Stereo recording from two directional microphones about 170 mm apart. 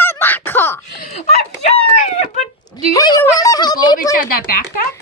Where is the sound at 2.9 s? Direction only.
20° left (ahead or behind).